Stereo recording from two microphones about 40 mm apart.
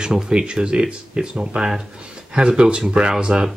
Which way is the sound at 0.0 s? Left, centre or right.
Right.